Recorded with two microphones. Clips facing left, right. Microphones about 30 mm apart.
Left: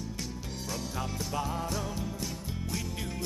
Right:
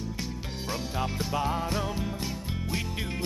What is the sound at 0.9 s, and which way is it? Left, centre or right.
Music, right.